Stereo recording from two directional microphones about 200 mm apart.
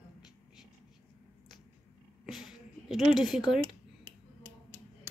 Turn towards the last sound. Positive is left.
turn(degrees=0)  # may be behind; listen again after turning